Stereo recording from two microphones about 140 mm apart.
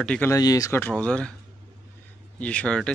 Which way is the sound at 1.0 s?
5° left (ahead or behind).